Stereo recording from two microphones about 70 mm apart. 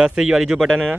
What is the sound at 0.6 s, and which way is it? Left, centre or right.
Speech, centre.